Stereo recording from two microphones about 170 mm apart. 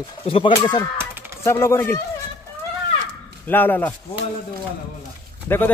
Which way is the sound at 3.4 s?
10° left (ahead or behind).